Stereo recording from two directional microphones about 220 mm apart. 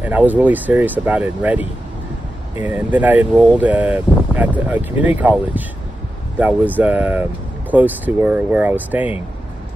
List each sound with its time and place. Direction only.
0.0 s speech: 5° right (ahead or behind)